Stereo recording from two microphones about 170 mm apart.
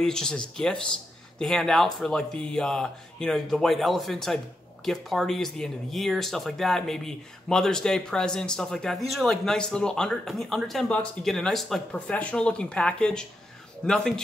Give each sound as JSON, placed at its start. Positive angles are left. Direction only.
{"t": 0.0, "sound": "speech", "side_deg": 5}